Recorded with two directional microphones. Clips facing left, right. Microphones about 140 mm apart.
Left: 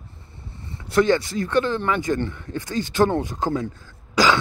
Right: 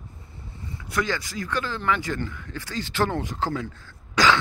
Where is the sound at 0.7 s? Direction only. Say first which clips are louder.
Left 9 dB; 25° left (ahead or behind).